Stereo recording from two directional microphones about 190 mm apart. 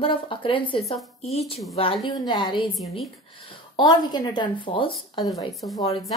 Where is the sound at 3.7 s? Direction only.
20° left (ahead or behind).